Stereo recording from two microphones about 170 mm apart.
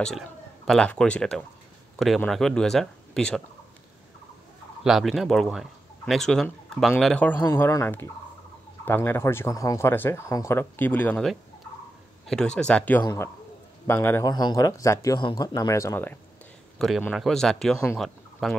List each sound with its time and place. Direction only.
0.7 s speech: 5° left (ahead or behind)
4.8 s speech: centre (ahead or behind)
16.7 s speech: centre (ahead or behind)